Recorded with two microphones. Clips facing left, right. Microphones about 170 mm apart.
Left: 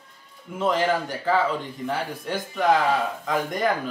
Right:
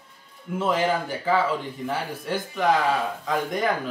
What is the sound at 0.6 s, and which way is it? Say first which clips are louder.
Speech: left 1 dB; 5° right (ahead or behind).